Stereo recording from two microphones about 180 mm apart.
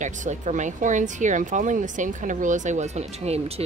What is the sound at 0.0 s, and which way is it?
Speech, 45° right (ahead or behind).